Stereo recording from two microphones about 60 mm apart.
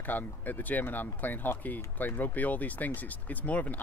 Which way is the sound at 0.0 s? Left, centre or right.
Left.